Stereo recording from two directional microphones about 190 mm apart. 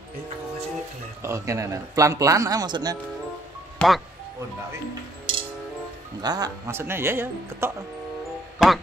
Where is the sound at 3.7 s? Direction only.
Centre (ahead or behind).